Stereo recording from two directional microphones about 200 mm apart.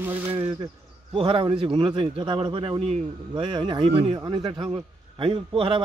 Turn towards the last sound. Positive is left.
turn(degrees=-25)  # may be behind; listen again after turning